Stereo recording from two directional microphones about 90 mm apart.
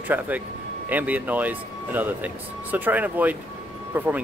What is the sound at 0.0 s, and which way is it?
Speech, 20° right (ahead or behind).